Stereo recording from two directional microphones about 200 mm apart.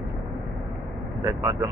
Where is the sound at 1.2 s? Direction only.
15° right (ahead or behind).